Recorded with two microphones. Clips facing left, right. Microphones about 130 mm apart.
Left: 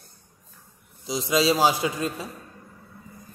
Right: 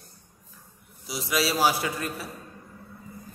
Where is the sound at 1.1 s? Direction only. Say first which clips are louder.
Left 5 dB; 20° left (ahead or behind).